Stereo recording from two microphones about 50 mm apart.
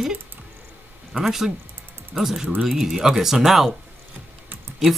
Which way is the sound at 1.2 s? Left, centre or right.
Centre.